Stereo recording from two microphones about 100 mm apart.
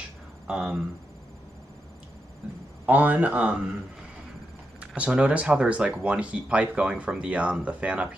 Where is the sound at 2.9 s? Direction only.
15° right (ahead or behind).